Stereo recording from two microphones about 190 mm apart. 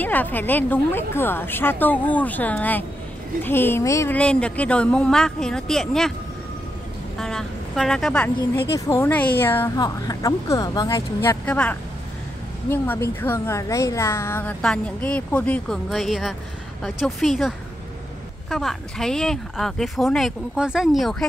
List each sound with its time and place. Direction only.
0.0 s a woman's voice: 10° left (ahead or behind)
7.2 s speech: 5° left (ahead or behind)
8.7 s a woman's voice: 15° left (ahead or behind)
11.2 s a woman's voice: 5° left (ahead or behind)